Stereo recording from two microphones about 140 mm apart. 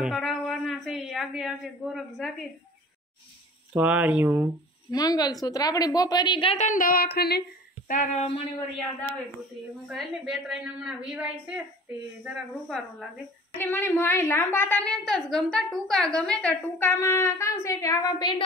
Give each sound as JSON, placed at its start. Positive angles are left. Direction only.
{"t": 0.0, "sound": "a sound", "side_deg": 0}
{"t": 3.7, "sound": "speech", "side_deg": -10}
{"t": 4.9, "sound": "a woman's voice", "side_deg": 30}
{"t": 6.5, "sound": "speech", "side_deg": 60}
{"t": 7.9, "sound": "speech", "side_deg": 55}
{"t": 9.8, "sound": "a woman's voice", "side_deg": -5}
{"t": 13.6, "sound": "a woman's voice", "side_deg": 15}